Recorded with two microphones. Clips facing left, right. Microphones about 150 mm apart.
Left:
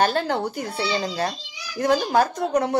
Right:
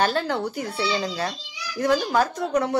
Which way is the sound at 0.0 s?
45° left (ahead or behind).